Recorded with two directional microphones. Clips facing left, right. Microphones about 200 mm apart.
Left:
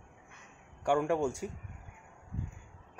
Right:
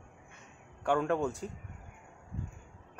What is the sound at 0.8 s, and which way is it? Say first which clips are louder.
Speech: left 1 dB; 10° left (ahead or behind).